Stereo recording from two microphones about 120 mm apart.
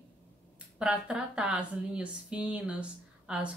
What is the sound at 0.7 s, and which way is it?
Speech, 5° right (ahead or behind).